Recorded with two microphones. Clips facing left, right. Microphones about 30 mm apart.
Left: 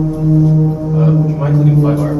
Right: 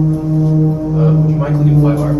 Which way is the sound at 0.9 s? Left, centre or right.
Centre.